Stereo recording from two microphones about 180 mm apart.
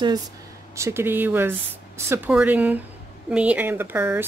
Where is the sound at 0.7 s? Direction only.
15° right (ahead or behind).